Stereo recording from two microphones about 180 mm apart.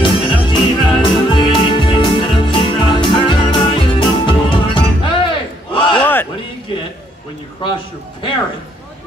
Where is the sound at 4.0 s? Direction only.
25° left (ahead or behind).